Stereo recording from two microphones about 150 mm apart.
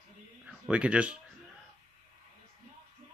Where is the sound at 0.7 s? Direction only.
10° right (ahead or behind).